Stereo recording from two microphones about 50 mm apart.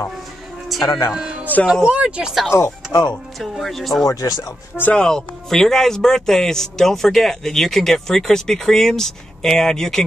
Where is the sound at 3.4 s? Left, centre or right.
Centre.